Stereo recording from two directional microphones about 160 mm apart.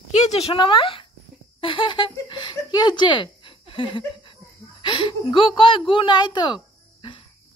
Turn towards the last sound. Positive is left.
turn(degrees=25)  # may be behind; listen again after turning